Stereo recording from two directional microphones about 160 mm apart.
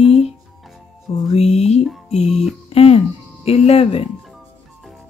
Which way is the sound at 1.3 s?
40° left (ahead or behind).